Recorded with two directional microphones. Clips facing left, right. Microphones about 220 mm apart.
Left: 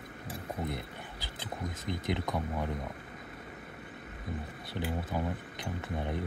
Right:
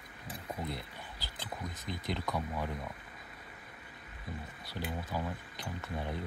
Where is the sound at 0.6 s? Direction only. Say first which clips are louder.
Left 4 dB; 20° left (ahead or behind).